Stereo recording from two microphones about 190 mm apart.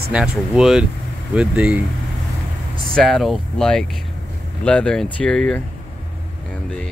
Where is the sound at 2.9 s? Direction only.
Centre (ahead or behind).